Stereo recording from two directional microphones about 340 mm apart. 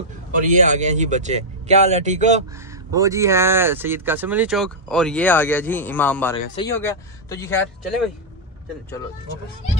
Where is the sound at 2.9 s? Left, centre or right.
Centre.